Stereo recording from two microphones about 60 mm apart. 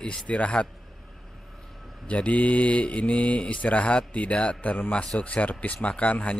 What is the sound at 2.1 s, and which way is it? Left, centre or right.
Speech, left.